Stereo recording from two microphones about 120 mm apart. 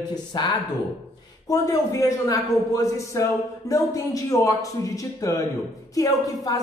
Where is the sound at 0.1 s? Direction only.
35° left (ahead or behind).